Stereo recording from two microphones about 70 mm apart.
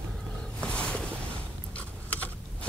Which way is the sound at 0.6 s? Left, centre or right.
Centre.